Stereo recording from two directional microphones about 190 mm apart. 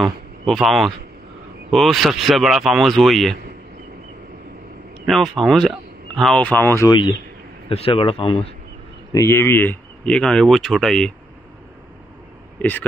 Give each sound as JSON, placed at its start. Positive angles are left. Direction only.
{"t": 0.0, "sound": "speech", "side_deg": 0}
{"t": 5.0, "sound": "speech", "side_deg": 0}
{"t": 9.1, "sound": "speech", "side_deg": 15}